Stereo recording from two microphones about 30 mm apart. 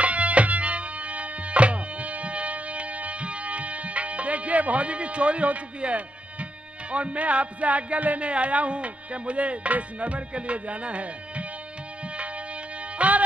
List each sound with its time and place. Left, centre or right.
0.0 s music: right
12.9 s music: right